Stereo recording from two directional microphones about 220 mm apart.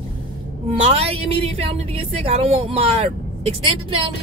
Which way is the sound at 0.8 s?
25° right (ahead or behind).